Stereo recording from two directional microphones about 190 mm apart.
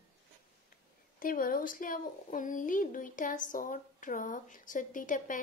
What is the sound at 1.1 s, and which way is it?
Speech, 45° left (ahead or behind).